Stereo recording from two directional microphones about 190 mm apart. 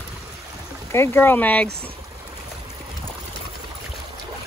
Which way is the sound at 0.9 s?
15° left (ahead or behind).